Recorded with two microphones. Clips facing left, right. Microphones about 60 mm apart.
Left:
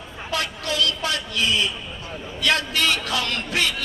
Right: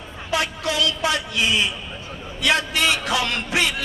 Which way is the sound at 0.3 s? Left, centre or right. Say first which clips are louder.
Right 3 dB; centre.